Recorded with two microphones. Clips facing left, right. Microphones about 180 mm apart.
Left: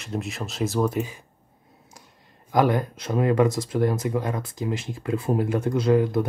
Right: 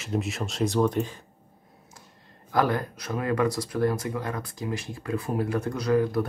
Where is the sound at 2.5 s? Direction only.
20° left (ahead or behind).